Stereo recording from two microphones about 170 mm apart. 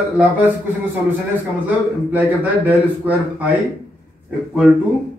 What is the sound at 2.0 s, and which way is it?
A man's voice, 10° right (ahead or behind).